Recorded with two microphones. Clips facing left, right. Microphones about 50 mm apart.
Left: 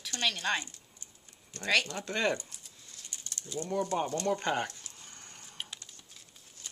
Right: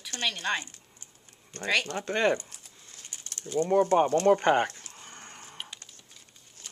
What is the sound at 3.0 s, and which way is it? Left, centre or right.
Speech, right.